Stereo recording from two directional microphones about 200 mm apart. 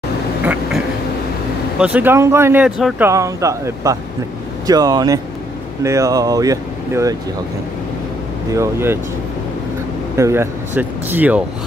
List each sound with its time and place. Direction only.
0.4 s quack: 5° right (ahead or behind)
1.8 s speech: 5° right (ahead or behind)
8.5 s speech: 10° right (ahead or behind)
10.1 s speech: 15° right (ahead or behind)